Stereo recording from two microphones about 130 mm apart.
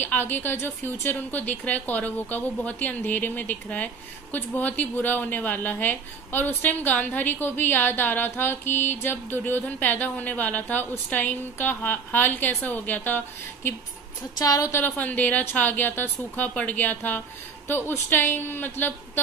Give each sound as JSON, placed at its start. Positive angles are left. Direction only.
{"t": 0.0, "sound": "speech", "side_deg": 15}
{"t": 14.4, "sound": "speech", "side_deg": 25}